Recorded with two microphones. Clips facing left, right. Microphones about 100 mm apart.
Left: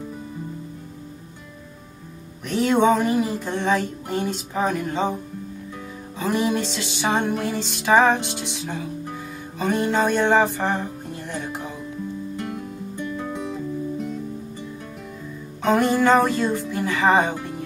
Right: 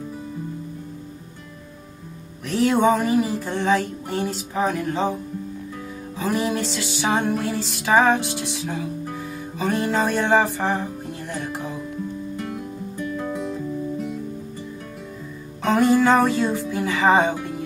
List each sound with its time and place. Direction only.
2.4 s music: centre (ahead or behind)
15.6 s music: centre (ahead or behind)